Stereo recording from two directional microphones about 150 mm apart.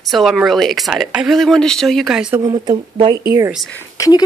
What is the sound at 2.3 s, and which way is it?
Speech, 25° right (ahead or behind).